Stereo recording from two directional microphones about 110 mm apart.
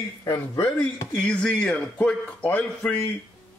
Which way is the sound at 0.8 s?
10° left (ahead or behind).